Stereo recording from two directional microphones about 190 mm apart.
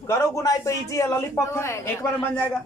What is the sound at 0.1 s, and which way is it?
Speech, 15° left (ahead or behind).